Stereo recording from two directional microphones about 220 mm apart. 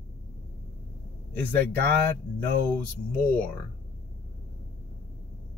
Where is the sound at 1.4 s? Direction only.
5° left (ahead or behind).